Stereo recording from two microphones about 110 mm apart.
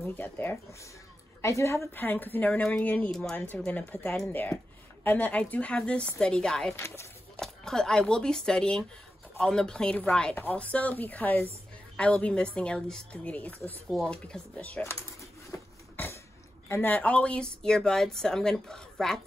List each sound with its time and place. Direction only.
0.0 s speech: 15° left (ahead or behind)
15.5 s a sound: 25° left (ahead or behind)
16.6 s speech: 20° left (ahead or behind); by 19.2 s 5° left (ahead or behind)